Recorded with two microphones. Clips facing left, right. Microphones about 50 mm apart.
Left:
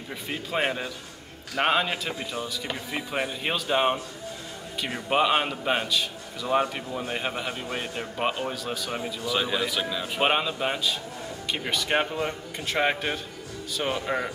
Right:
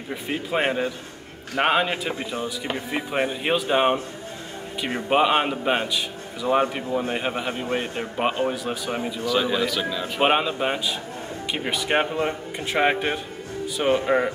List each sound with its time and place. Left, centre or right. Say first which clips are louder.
0.1 s a man's voice: right 4 dB; centre
2.1 s a man's voice: right 4 dB; right
2.7 s a man's voice: right 5 dB; centre
5.1 s a man's voice: right 3 dB; centre
7.6 s a man's voice: right 5 dB; right
8.5 s a man's voice: right 4 dB; centre
9.3 s speech: right 4 dB; centre
10.1 s a man's voice: right 4 dB; centre